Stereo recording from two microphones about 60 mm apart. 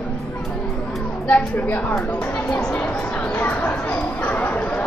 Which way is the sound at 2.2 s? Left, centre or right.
Centre.